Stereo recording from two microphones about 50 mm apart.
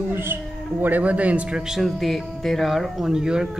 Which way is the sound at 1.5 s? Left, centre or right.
Centre.